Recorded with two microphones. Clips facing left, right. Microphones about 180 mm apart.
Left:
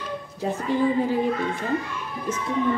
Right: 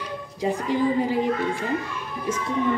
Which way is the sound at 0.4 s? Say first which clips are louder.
Even; 15° right (ahead or behind).